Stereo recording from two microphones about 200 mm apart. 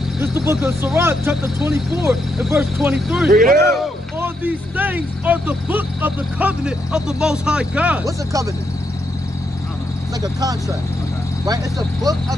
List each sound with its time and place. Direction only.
0.2 s speech: 10° right (ahead or behind)
3.3 s speech: 45° right (ahead or behind)
4.2 s speech: 10° right (ahead or behind)
11.4 s speech: 20° right (ahead or behind)